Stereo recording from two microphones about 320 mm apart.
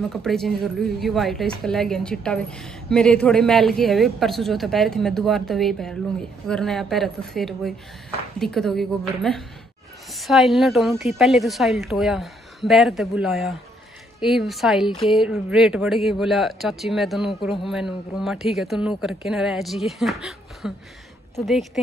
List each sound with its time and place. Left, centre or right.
0.1 s a woman's voice: centre